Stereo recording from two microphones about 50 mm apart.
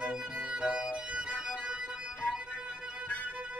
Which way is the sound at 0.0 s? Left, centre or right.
Centre.